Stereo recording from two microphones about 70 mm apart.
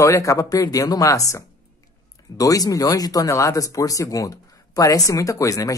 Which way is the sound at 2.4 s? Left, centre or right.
Left.